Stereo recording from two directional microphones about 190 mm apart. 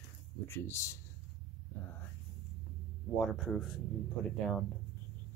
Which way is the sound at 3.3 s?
Centre (ahead or behind).